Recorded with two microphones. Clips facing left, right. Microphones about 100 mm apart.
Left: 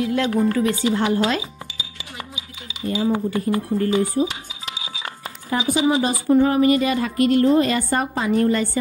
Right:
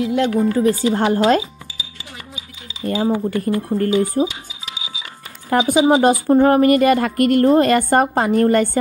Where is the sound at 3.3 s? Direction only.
50° right (ahead or behind).